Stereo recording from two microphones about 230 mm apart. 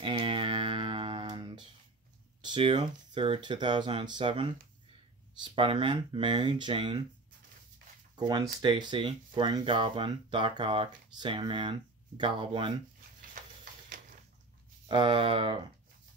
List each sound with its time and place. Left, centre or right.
0.0 s a sound: right
2.4 s speech: right
8.2 s speech: centre
14.9 s speech: right